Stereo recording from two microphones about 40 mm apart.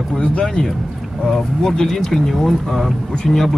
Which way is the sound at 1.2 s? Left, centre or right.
Centre.